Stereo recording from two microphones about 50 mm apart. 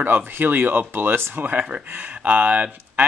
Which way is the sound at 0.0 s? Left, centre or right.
Right.